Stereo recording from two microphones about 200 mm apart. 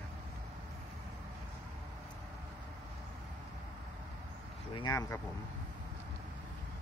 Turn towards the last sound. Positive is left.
turn(degrees=15)  # may be behind; listen again after turning